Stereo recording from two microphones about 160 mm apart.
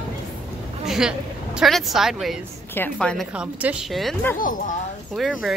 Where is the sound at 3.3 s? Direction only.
10° right (ahead or behind).